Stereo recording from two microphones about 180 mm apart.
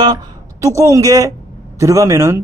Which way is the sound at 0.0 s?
20° right (ahead or behind).